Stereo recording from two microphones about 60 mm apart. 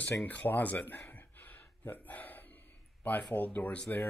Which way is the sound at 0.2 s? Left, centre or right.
Left.